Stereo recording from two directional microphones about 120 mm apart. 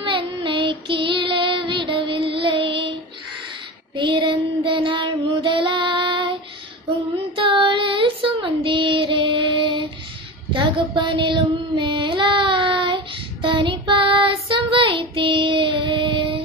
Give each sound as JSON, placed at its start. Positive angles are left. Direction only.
{"t": 0.0, "sound": "child singing", "side_deg": -45}
{"t": 10.5, "sound": "a sound", "side_deg": -45}
{"t": 11.8, "sound": "child singing", "side_deg": -45}